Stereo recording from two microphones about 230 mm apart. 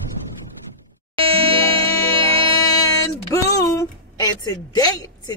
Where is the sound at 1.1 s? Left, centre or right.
Right.